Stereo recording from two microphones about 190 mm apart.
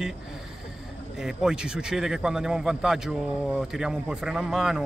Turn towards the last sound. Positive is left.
turn(degrees=-5)  # may be behind; listen again after turning